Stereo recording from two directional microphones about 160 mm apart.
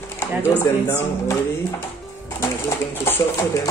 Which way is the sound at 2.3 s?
15° left (ahead or behind).